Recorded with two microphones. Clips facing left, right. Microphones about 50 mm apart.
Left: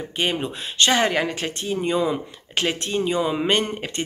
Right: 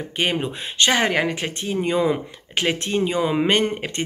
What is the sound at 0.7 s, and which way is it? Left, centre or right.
Speech, right.